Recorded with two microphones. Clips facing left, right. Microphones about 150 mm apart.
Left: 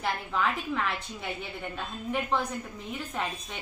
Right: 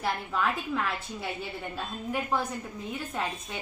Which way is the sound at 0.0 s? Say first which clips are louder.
Even; 5° right (ahead or behind).